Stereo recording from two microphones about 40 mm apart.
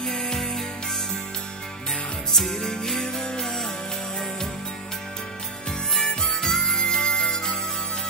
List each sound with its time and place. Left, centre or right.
0.0 s music: centre
2.3 s music: centre
6.0 s harmonica: centre